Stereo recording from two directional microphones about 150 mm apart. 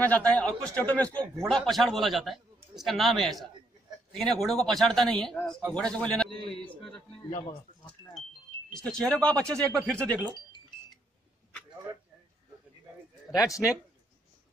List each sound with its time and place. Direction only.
0.0 s a man's voice: 10° left (ahead or behind)
7.8 s a sound: centre (ahead or behind)
8.8 s speech: 5° left (ahead or behind)
13.3 s a man's voice: 20° left (ahead or behind)